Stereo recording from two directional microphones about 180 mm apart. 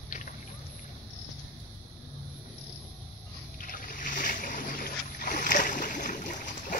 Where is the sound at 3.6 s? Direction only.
50° left (ahead or behind).